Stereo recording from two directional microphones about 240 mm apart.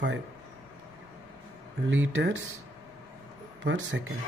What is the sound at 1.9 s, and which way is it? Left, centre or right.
Speech, right.